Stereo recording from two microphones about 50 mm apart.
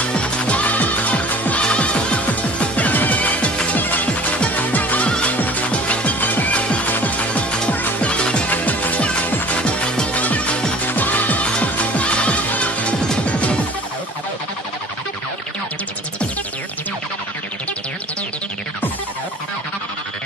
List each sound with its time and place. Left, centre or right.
0.1 s music: left
8.5 s music: left
11.4 s music: left